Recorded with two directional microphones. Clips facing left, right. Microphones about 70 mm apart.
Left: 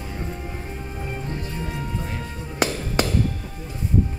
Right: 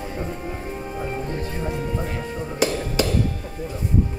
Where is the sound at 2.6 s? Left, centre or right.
Left.